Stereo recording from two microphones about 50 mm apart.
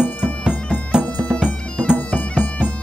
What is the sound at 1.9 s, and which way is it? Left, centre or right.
Bagpipes, left.